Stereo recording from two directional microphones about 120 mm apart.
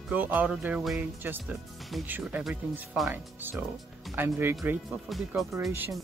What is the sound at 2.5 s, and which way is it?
Speech, 15° right (ahead or behind).